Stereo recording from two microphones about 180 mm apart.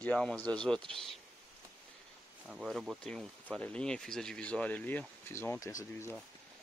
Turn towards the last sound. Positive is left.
turn(degrees=15)  # may be behind; listen again after turning